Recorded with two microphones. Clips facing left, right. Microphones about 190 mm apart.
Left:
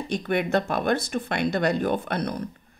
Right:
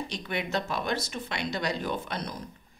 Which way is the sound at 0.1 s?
55° left (ahead or behind).